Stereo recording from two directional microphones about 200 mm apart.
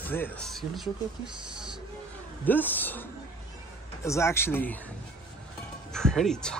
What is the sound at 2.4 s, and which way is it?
Speech, 10° left (ahead or behind).